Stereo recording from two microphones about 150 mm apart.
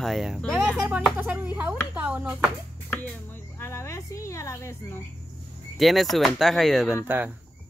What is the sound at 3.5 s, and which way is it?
Speech, 20° left (ahead or behind).